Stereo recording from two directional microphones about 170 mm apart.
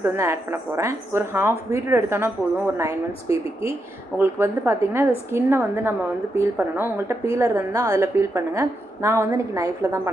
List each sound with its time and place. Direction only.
0.0 s a woman's voice: 15° right (ahead or behind)